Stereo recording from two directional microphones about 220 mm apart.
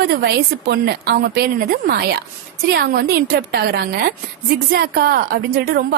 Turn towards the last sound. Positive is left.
turn(degrees=-40)  # may be behind; listen again after turning